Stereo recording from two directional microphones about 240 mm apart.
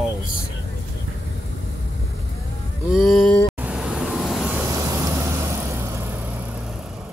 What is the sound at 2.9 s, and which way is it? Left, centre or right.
Vehicle, centre.